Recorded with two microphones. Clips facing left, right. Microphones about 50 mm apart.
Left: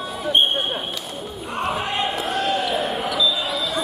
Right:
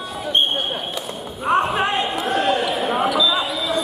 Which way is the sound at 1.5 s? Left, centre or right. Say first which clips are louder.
Right 7 dB; right.